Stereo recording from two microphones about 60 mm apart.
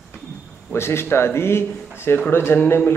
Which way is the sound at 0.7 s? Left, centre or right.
Left.